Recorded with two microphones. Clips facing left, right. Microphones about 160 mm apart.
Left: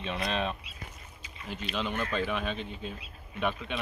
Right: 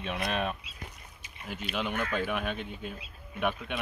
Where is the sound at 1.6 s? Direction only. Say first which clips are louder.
Even; 10° right (ahead or behind).